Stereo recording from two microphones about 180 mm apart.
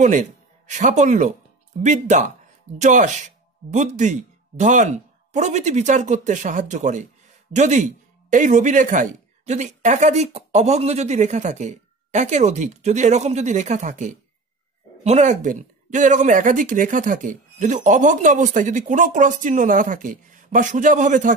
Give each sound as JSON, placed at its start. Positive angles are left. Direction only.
{"t": 0.0, "sound": "speech", "side_deg": -40}